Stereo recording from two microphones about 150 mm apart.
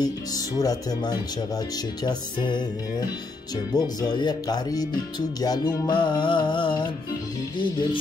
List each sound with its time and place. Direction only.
0.0 s speech: 25° left (ahead or behind)
5.4 s music: 25° left (ahead or behind)